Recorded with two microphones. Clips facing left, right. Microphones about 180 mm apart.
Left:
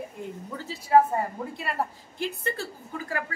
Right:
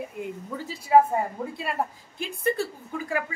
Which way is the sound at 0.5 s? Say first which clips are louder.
Right 1 dB; 10° right (ahead or behind).